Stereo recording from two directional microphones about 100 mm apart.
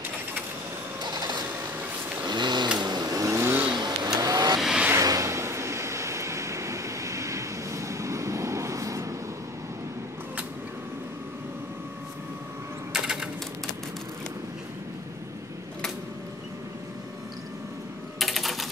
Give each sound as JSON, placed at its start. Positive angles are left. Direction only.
{"t": 1.0, "sound": "printer", "side_deg": -45}
{"t": 2.2, "sound": "a sound", "side_deg": -50}
{"t": 2.8, "sound": "vehicle", "side_deg": -45}
{"t": 3.7, "sound": "vehicle", "side_deg": -45}
{"t": 4.6, "sound": "vehicle", "side_deg": -5}
{"t": 4.9, "sound": "vehicle", "side_deg": -35}
{"t": 12.9, "sound": "a sound", "side_deg": -5}
{"t": 18.2, "sound": "typing", "side_deg": 0}